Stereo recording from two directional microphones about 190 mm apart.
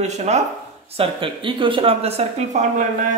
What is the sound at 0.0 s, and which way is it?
Speech, 35° right (ahead or behind).